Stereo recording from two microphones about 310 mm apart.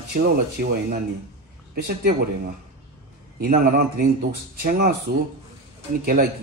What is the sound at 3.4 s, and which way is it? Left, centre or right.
A man's voice, right.